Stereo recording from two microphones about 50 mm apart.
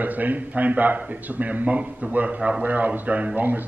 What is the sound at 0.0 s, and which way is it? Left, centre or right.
A man's voice, right.